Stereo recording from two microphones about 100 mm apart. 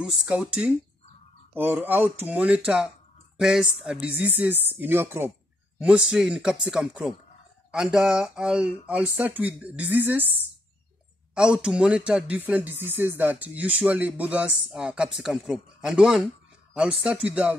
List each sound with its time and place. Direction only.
0.0 s speech: 10° right (ahead or behind)
5.8 s speech: 10° right (ahead or behind)
11.3 s speech: 5° right (ahead or behind)